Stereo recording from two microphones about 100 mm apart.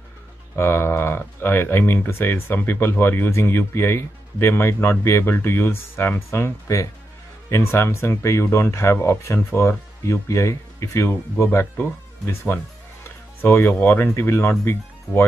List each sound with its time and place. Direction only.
0.6 s speech: 25° left (ahead or behind)